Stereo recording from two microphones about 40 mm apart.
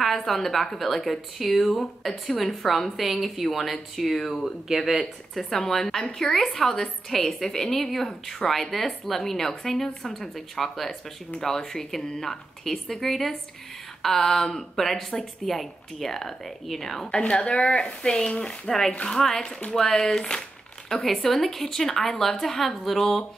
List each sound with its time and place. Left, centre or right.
0.3 s speech: centre
5.4 s a woman's voice: centre
17.1 s speech: left
18.7 s a woman's voice: centre